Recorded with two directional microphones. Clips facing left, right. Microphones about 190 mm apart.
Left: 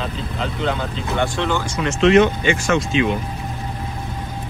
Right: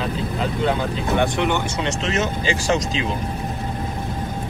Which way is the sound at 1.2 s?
20° right (ahead or behind).